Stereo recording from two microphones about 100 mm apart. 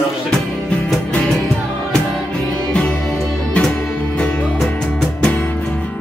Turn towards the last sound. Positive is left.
turn(degrees=5)  # may be behind; listen again after turning